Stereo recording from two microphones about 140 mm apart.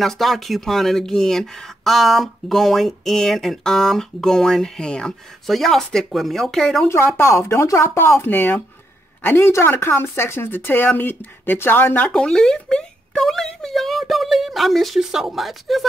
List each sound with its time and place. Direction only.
0.0 s speech: centre (ahead or behind)
7.2 s speech: 20° left (ahead or behind); by 15.9 s centre (ahead or behind)